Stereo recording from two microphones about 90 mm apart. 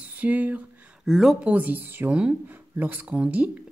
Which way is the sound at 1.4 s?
20° right (ahead or behind).